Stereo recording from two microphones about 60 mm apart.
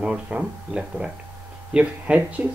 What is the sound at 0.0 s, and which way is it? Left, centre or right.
Speech, centre.